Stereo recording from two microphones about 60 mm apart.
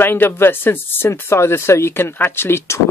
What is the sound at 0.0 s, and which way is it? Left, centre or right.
Speech, left.